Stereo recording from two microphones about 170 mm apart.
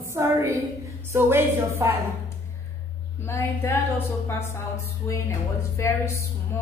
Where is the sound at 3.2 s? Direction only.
15° left (ahead or behind).